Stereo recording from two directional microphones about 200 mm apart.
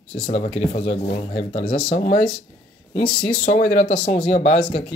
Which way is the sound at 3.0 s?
5° left (ahead or behind).